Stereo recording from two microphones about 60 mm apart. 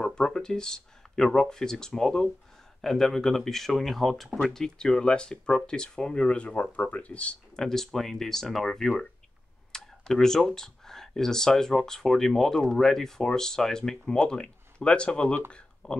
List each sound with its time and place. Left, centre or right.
0.0 s speech: centre
7.5 s speech: centre